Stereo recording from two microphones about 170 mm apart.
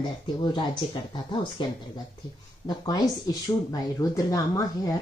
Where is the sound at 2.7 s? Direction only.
25° left (ahead or behind).